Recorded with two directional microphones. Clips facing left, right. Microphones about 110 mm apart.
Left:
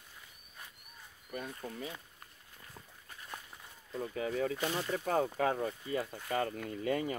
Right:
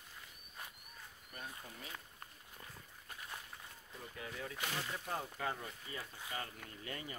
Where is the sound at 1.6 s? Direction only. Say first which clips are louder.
Left 11 dB; 90° left.